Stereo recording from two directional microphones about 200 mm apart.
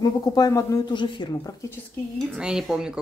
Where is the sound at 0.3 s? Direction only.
15° left (ahead or behind).